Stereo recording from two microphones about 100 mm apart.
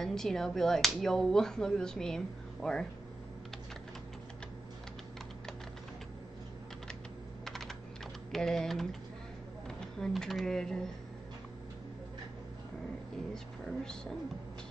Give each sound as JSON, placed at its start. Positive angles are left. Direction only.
{"t": 0.0, "sound": "speech", "side_deg": 5}
{"t": 7.4, "sound": "typing", "side_deg": 5}
{"t": 8.3, "sound": "speech", "side_deg": 5}